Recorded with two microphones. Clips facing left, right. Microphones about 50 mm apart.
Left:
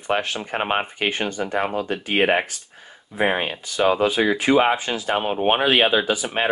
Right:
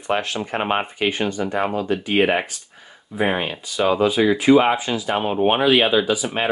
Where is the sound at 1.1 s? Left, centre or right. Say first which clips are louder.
Right 2 dB; left.